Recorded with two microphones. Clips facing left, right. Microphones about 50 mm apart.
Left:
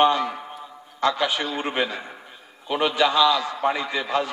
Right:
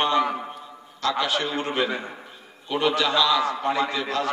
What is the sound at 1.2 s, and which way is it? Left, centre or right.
A man's voice, centre.